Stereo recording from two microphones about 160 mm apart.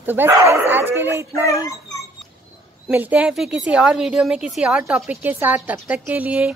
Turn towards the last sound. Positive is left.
turn(degrees=-10)  # may be behind; listen again after turning